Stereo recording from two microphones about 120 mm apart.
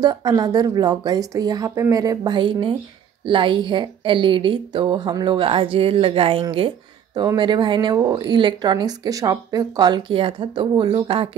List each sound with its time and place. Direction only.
0.0 s a woman's voice: 35° right (ahead or behind)
2.3 s a woman's voice: 45° right (ahead or behind)
7.2 s a woman's voice: 40° right (ahead or behind)